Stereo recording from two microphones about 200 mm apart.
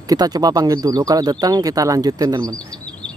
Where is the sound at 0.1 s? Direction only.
20° right (ahead or behind).